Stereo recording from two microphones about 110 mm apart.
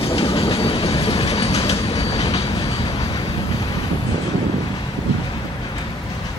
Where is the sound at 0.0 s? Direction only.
60° left (ahead or behind).